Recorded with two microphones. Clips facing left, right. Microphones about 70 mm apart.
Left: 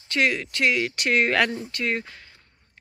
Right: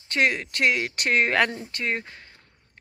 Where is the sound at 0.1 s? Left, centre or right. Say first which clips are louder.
Even; right.